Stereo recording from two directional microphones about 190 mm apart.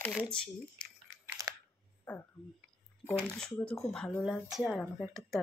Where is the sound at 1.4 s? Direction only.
15° right (ahead or behind).